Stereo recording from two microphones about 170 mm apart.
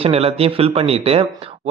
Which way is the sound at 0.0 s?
35° right (ahead or behind).